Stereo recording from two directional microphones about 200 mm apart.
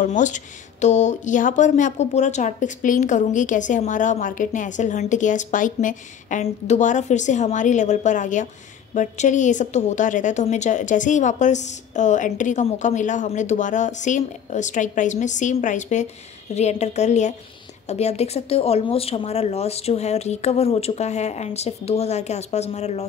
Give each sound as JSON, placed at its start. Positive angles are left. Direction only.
{"t": 0.0, "sound": "speech", "side_deg": 40}